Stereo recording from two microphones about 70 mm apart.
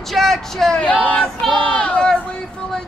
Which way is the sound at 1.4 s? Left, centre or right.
Centre.